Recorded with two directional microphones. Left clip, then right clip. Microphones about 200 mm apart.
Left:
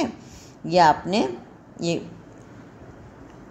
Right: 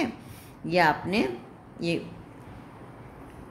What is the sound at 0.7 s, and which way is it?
A woman's voice, 15° left (ahead or behind).